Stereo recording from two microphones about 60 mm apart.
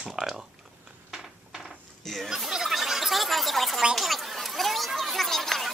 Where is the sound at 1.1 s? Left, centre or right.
Centre.